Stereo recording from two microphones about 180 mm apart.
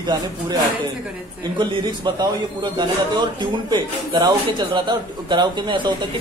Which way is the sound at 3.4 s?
25° right (ahead or behind).